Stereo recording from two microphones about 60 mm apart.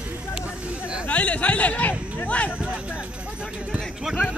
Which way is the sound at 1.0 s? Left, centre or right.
Left.